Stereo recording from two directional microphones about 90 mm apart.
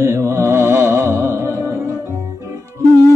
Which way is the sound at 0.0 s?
30° right (ahead or behind).